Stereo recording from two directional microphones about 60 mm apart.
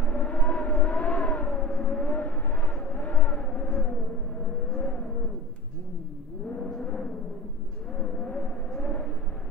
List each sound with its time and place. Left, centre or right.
0.0 s vehicle: left
6.5 s a sound: centre
7.9 s vehicle: centre